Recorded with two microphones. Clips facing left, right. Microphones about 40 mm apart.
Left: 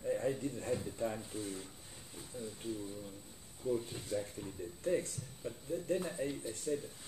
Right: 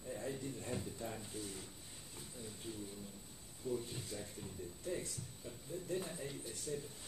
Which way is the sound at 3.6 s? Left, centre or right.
Left.